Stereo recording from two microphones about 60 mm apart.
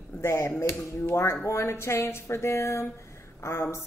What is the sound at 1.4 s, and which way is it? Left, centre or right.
Speech, left.